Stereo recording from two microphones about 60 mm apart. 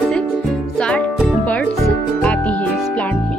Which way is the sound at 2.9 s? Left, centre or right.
Left.